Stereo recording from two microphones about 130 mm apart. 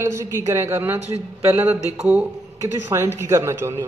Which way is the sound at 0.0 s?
20° right (ahead or behind).